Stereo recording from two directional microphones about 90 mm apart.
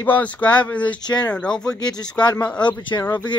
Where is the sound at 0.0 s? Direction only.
20° left (ahead or behind).